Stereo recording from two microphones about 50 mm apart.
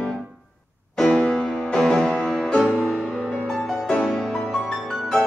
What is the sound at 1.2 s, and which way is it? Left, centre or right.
Music, centre.